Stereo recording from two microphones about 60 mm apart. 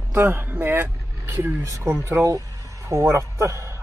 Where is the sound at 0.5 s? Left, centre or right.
Right.